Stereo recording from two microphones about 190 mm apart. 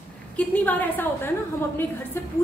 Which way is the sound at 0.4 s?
10° left (ahead or behind).